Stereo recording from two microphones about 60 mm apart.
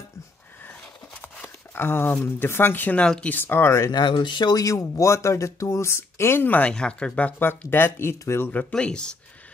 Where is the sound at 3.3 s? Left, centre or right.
Left.